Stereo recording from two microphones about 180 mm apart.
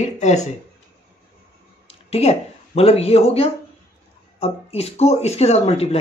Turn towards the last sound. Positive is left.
turn(degrees=35)  # may be behind; listen again after turning